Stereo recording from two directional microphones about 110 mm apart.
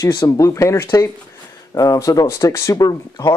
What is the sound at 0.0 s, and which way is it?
Speech, 30° left (ahead or behind).